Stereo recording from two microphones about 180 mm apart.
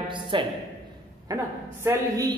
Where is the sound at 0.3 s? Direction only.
25° right (ahead or behind).